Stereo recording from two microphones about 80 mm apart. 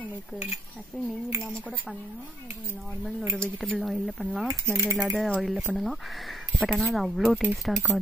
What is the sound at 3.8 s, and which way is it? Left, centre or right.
Speech, centre.